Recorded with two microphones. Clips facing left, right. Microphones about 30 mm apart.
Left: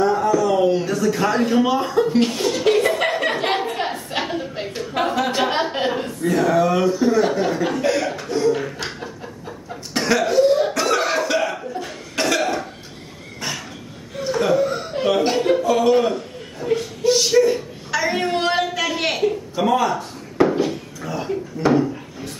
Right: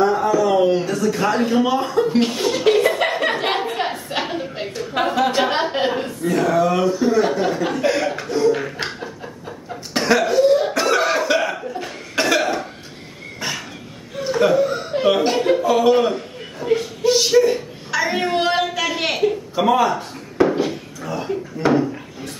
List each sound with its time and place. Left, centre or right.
0.0 s a sound: centre
0.8 s speech: centre
8.5 s a sound: centre
9.7 s cough: centre
13.4 s dog: centre
14.1 s chuckle: centre
15.0 s speech: centre
15.6 s chuckle: centre
20.4 s a sound: centre